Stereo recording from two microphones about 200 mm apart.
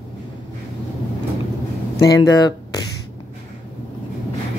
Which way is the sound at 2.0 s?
20° left (ahead or behind).